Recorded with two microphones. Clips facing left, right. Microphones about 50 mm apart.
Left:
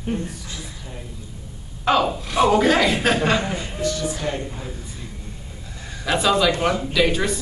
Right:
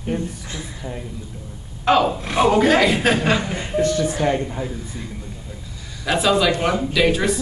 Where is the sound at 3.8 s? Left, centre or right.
Right; by 4.7 s centre.